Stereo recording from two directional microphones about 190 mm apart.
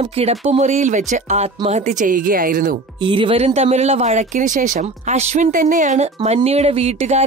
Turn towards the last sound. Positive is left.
turn(degrees=-35)  # may be behind; listen again after turning